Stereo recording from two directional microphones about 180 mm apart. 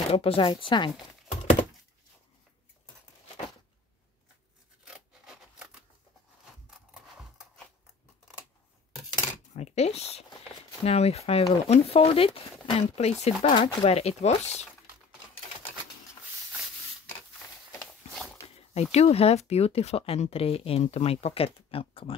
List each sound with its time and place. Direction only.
0.1 s speech: 35° left (ahead or behind)
4.8 s rub: 5° right (ahead or behind)
6.9 s a sound: centre (ahead or behind)
9.5 s speech: 40° left (ahead or behind)
18.7 s speech: 35° left (ahead or behind)